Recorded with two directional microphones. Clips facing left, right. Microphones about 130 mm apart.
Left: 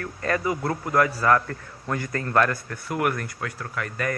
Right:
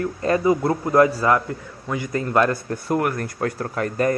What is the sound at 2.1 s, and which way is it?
Speech, 20° right (ahead or behind).